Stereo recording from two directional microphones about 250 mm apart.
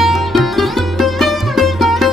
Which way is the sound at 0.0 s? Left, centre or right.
Centre.